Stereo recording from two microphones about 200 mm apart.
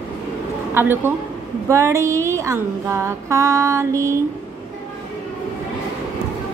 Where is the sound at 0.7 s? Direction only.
10° right (ahead or behind).